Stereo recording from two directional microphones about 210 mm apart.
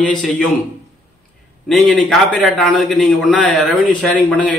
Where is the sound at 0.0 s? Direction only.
5° left (ahead or behind).